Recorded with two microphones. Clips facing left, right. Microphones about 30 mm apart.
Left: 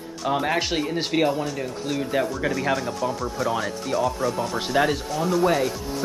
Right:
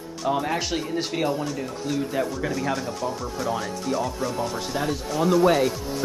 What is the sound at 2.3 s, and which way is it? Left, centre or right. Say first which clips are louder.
Speech: left 2 dB; centre.